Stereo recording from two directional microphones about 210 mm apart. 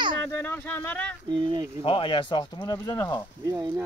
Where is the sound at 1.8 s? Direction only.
25° left (ahead or behind).